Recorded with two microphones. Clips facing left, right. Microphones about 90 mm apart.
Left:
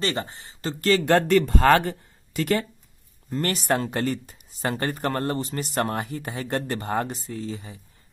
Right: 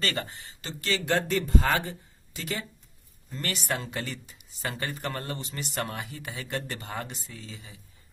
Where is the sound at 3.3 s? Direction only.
45° left (ahead or behind).